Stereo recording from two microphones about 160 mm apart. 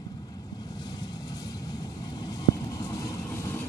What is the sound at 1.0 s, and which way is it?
Vehicle, 25° left (ahead or behind).